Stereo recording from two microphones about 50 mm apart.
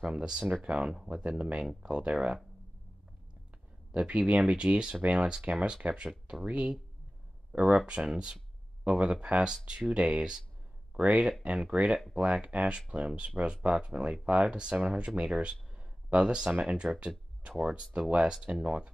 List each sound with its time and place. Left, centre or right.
0.2 s speech: centre
3.9 s speech: right
8.8 s speech: right
11.0 s speech: right